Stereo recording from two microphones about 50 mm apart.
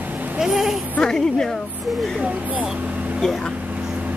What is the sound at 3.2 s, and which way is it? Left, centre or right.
Speech, centre.